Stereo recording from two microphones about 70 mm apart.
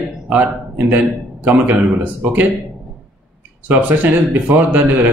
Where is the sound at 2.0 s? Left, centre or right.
Right.